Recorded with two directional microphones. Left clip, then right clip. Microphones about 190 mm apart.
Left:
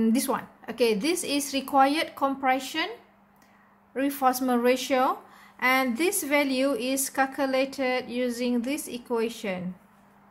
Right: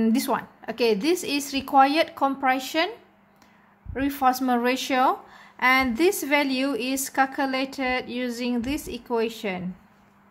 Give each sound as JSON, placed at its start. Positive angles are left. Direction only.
{"t": 0.0, "sound": "a woman's voice", "side_deg": -30}
{"t": 3.9, "sound": "a woman's voice", "side_deg": -30}